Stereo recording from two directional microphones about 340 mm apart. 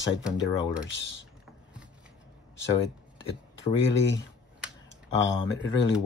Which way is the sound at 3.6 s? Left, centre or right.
Left.